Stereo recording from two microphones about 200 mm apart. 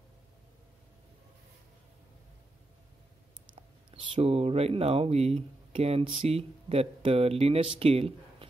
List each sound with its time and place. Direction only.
3.9 s speech: 25° right (ahead or behind)